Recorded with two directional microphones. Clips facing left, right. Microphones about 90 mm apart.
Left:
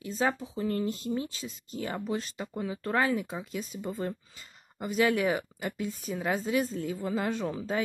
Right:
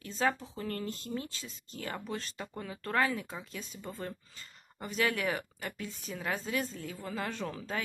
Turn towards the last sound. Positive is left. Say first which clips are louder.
# left 6 dB
turn(degrees=15)  # may be behind; listen again after turning